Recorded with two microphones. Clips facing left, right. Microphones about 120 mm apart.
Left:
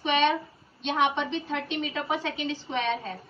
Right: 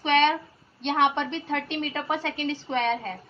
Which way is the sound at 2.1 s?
15° left (ahead or behind).